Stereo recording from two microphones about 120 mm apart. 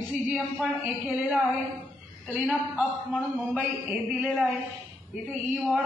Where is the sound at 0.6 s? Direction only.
5° right (ahead or behind).